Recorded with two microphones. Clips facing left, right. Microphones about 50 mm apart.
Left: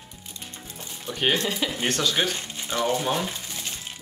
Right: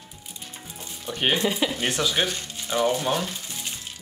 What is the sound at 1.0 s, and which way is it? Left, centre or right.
Speech, centre.